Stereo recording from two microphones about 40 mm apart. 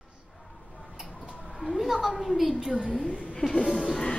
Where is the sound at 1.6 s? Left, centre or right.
Centre.